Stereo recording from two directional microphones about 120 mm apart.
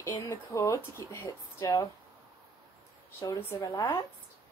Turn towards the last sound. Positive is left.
turn(degrees=25)  # may be behind; listen again after turning